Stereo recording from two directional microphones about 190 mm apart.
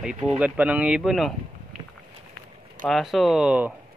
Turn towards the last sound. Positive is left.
turn(degrees=-5)  # may be behind; listen again after turning